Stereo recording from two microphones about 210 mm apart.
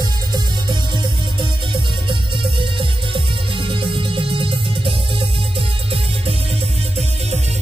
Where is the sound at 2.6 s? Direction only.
25° right (ahead or behind).